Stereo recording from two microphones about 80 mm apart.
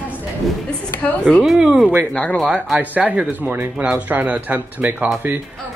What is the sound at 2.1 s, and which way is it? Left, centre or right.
Speech, centre.